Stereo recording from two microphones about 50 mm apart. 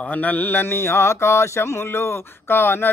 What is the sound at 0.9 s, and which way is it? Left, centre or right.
Speech, left.